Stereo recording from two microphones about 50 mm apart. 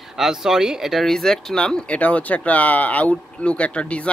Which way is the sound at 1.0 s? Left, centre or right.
Centre.